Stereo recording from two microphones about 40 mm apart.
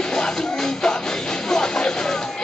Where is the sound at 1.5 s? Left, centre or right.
Centre.